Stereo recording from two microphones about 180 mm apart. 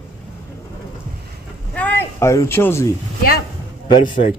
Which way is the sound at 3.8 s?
25° left (ahead or behind).